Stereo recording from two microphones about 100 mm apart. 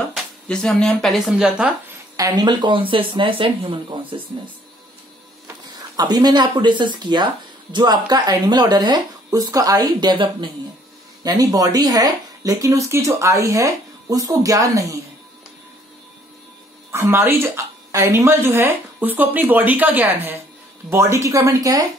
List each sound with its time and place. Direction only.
0.5 s speech: 5° left (ahead or behind)
2.1 s speech: 40° right (ahead or behind); by 4.2 s 60° right (ahead or behind)
5.9 s speech: 40° right (ahead or behind)
11.2 s speech: 35° right (ahead or behind)
16.9 s speech: 25° right (ahead or behind)